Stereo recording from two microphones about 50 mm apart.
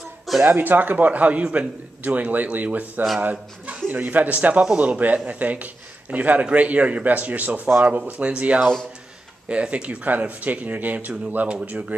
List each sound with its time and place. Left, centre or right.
0.5 s a man's voice: right
8.0 s a man's voice: right
11.4 s speech: right